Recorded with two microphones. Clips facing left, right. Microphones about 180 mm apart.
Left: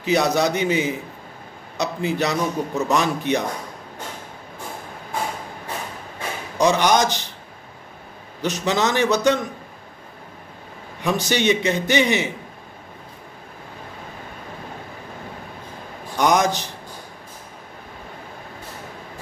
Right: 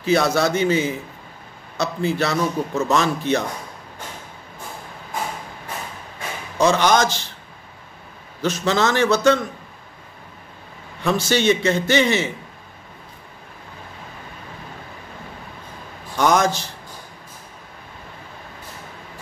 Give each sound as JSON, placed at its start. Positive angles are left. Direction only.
{"t": 0.0, "sound": "a man's voice", "side_deg": 15}
{"t": 6.6, "sound": "a man's voice", "side_deg": 15}
{"t": 8.4, "sound": "a man's voice", "side_deg": 15}
{"t": 11.0, "sound": "a man's voice", "side_deg": 15}
{"t": 16.2, "sound": "a man's voice", "side_deg": 15}